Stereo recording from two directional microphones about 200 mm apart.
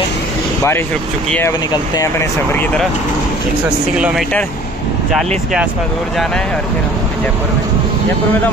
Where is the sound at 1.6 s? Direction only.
20° left (ahead or behind).